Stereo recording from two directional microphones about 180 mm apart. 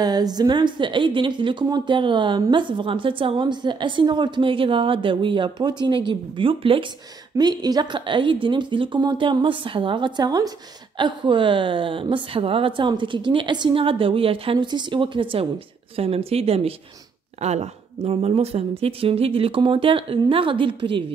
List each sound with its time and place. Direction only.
0.0 s speech: 20° right (ahead or behind)